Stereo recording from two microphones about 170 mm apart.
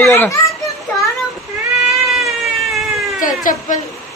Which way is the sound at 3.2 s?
50° left (ahead or behind).